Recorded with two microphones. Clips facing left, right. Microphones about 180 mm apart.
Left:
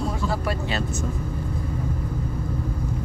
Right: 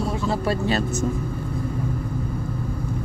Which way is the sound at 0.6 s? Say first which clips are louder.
Right 5 dB; 40° right (ahead or behind).